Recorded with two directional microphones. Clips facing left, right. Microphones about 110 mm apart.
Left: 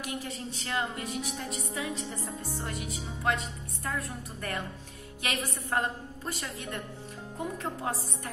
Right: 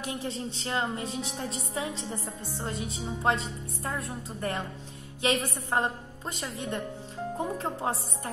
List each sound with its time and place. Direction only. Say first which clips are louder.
0.0 s a woman's voice: right 3 dB; 30° right (ahead or behind)